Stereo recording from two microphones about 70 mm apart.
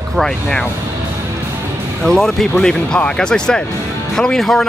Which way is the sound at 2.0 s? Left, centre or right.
Centre.